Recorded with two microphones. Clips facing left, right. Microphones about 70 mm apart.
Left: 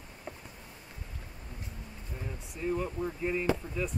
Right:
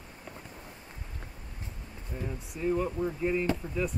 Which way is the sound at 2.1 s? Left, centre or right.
Centre.